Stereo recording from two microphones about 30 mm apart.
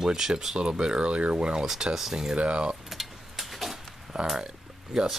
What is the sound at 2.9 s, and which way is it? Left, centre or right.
Tick-tock, centre.